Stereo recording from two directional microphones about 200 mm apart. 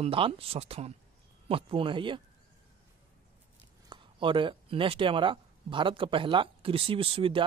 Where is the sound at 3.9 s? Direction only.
25° right (ahead or behind).